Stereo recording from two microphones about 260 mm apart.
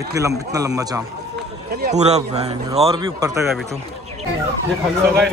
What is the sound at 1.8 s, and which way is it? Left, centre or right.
A man's voice, right.